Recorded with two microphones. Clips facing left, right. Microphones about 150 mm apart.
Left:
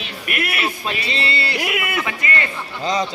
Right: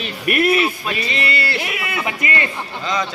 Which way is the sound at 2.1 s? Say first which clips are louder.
Right 2 dB; 20° right (ahead or behind).